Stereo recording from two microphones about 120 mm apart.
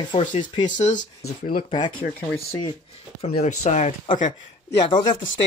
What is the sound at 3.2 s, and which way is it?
Speech, 70° left (ahead or behind).